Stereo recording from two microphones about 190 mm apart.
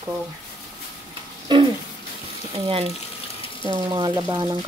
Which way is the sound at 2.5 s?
30° right (ahead or behind).